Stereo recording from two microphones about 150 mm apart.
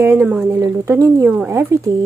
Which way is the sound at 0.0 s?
15° right (ahead or behind).